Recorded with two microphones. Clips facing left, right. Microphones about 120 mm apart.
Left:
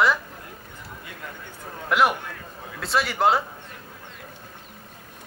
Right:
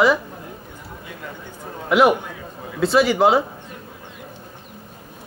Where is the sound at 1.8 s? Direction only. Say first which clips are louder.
Right 6 dB; centre (ahead or behind).